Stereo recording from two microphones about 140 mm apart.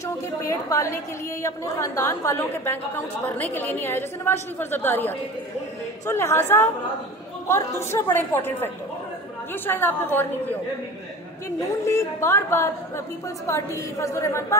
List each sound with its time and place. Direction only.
0.0 s a woman's voice: 20° left (ahead or behind)
7.4 s a woman's voice: 20° left (ahead or behind)
11.8 s a woman's voice: 20° left (ahead or behind)